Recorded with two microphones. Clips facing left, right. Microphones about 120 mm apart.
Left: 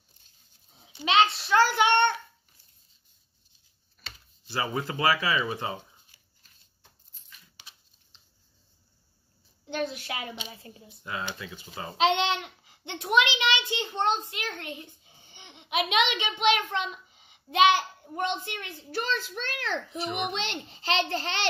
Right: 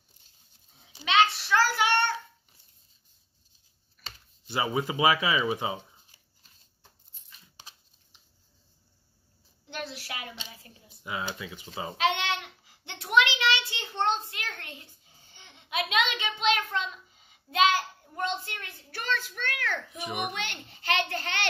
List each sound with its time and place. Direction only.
1.0 s a child's voice: 25° left (ahead or behind)
4.5 s speech: 15° right (ahead or behind)
7.2 s dog: 35° right (ahead or behind)
8.1 s a sound: 15° right (ahead or behind)
9.7 s a sound: 20° left (ahead or behind)
11.3 s speech: 10° right (ahead or behind)
12.0 s a child's voice: 20° left (ahead or behind)
20.0 s speech: 15° right (ahead or behind)
20.2 s a child's voice: 20° left (ahead or behind)